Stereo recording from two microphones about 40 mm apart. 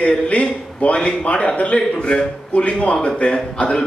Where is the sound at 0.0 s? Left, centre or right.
Left.